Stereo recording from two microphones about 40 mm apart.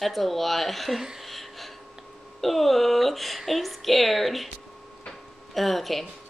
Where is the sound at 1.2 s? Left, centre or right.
Centre.